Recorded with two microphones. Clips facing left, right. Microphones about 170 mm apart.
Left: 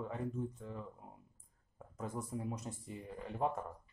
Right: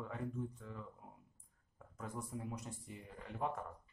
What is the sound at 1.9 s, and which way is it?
Speech, 25° left (ahead or behind).